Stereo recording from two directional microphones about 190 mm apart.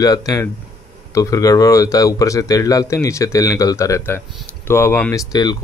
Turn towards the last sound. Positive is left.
turn(degrees=20)  # may be behind; listen again after turning